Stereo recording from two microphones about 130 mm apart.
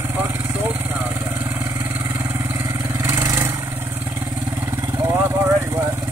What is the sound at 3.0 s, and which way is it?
Vehicle, 20° right (ahead or behind).